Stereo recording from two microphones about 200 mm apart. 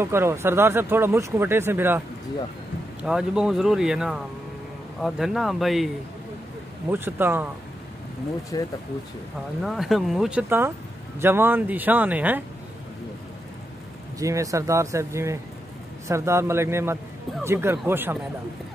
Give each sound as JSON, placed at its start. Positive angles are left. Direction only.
{"t": 0.0, "sound": "speech", "side_deg": -10}
{"t": 6.9, "sound": "speech", "side_deg": -10}
{"t": 8.5, "sound": "speech", "side_deg": 20}
{"t": 9.6, "sound": "speech", "side_deg": 0}
{"t": 14.2, "sound": "speech", "side_deg": -15}